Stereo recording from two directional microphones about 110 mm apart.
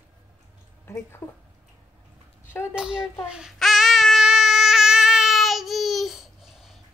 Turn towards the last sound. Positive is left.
turn(degrees=0)  # may be behind; listen again after turning